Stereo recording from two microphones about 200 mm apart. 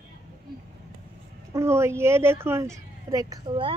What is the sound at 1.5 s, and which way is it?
A woman's voice, 15° right (ahead or behind).